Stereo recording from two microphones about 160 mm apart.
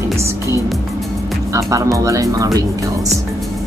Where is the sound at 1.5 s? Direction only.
20° right (ahead or behind).